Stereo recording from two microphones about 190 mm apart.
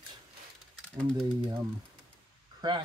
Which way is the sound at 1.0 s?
5° left (ahead or behind).